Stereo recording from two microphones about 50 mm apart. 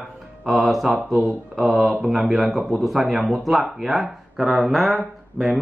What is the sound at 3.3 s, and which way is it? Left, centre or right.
Speech, centre.